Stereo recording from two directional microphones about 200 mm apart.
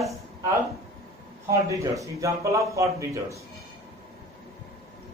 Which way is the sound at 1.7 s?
15° right (ahead or behind).